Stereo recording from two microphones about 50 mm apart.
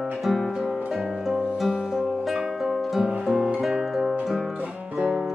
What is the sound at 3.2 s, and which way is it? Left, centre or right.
Guitar, centre.